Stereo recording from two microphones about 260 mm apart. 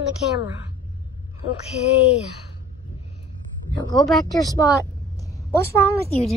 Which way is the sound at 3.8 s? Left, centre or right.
Centre.